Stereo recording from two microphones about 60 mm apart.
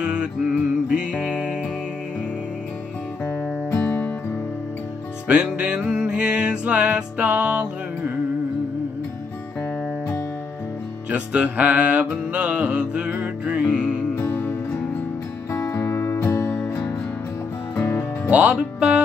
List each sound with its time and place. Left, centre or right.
0.0 s music: centre
3.3 s music: left
5.3 s music: centre
11.1 s music: centre
14.1 s music: left
15.5 s music: left
16.4 s music: left
17.7 s music: left
18.3 s music: right